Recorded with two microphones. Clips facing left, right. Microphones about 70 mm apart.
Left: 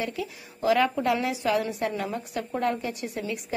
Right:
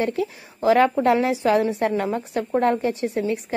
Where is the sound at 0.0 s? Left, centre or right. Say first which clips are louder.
Right 8 dB; right.